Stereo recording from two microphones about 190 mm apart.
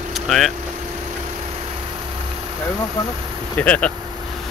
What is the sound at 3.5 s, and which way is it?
Speech, 5° left (ahead or behind).